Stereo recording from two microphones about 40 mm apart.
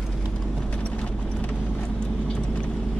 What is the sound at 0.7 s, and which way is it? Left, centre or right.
Clip-clop, left.